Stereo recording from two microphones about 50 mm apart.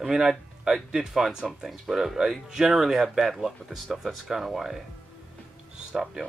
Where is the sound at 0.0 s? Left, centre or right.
Centre.